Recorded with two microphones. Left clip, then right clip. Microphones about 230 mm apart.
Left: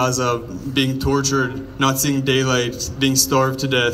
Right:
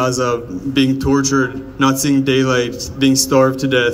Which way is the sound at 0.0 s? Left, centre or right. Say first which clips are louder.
Right 3 dB; right.